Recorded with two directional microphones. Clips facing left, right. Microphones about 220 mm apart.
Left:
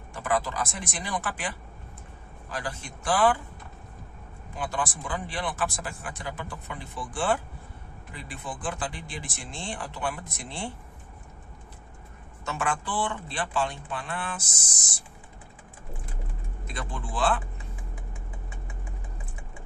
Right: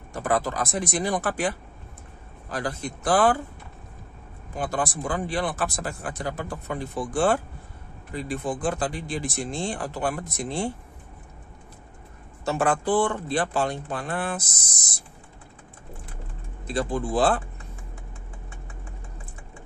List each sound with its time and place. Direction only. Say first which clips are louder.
0.1 s speech: right 3 dB; 40° right (ahead or behind)
2.5 s speech: right 6 dB; 40° right (ahead or behind)
4.6 s speech: right 4 dB; 40° right (ahead or behind)
12.4 s speech: right 8 dB; 35° right (ahead or behind)
16.6 s speech: right 11 dB; 35° right (ahead or behind)